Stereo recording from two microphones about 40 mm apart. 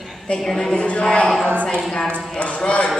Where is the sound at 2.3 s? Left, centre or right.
Left.